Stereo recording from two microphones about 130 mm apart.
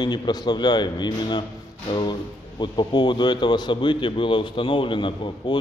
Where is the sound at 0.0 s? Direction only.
35° left (ahead or behind).